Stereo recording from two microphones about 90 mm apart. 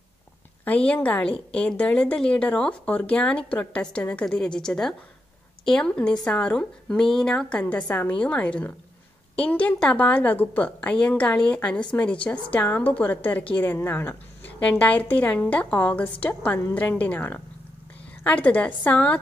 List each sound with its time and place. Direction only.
0.7 s a woman's voice: 15° left (ahead or behind)